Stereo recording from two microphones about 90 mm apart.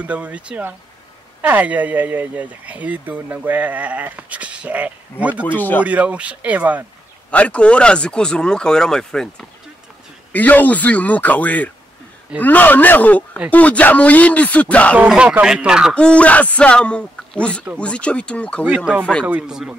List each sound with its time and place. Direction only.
0.0 s speech: 15° right (ahead or behind)
5.3 s speech: 20° left (ahead or behind)
5.9 s speech: 15° right (ahead or behind)
7.2 s speech: 15° left (ahead or behind)
10.3 s speech: 20° left (ahead or behind)
15.0 s speech: 10° right (ahead or behind)
15.9 s speech: 10° left (ahead or behind)
19.4 s speech: 5° right (ahead or behind)